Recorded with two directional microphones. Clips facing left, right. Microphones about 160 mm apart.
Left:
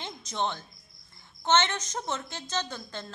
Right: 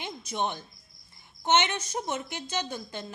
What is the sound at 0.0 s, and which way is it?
A woman's voice, 15° right (ahead or behind).